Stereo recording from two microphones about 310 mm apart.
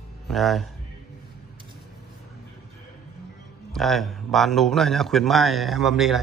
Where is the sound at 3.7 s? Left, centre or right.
Centre.